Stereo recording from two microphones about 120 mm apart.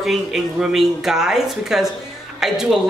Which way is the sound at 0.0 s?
Centre (ahead or behind).